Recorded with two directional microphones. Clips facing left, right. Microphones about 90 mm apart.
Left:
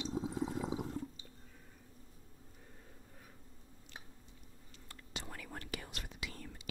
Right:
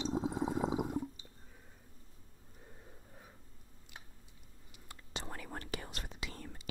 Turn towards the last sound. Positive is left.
turn(degrees=-35)  # may be behind; listen again after turning